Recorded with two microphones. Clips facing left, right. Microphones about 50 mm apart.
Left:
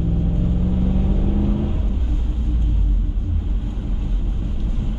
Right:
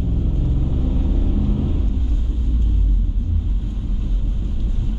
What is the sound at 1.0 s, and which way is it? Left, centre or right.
Vehicle, left.